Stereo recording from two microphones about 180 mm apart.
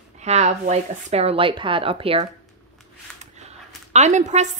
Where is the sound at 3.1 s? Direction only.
40° right (ahead or behind).